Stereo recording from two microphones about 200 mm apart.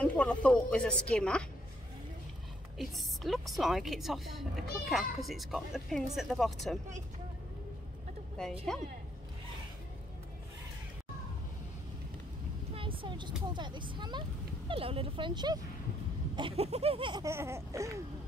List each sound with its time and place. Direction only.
0.0 s speech: 5° left (ahead or behind)
2.8 s speech: centre (ahead or behind)
8.7 s speech: centre (ahead or behind)
12.7 s vehicle: 25° right (ahead or behind)
13.5 s laughter: 25° right (ahead or behind)